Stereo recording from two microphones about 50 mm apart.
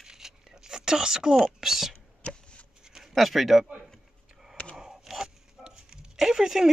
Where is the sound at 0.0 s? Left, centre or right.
Centre.